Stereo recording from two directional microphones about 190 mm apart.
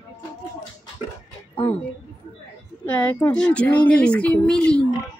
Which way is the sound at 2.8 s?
10° left (ahead or behind).